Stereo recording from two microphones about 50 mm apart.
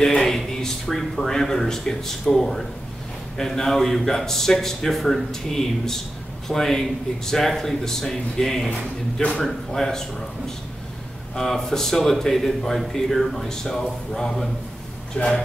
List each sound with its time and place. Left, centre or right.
0.0 s a man's voice: centre
11.3 s a man's voice: centre